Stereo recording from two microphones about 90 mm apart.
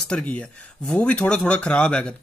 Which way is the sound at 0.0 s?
10° left (ahead or behind).